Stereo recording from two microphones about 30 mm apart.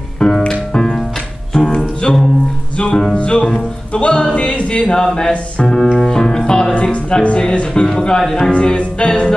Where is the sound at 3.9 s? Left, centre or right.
Left.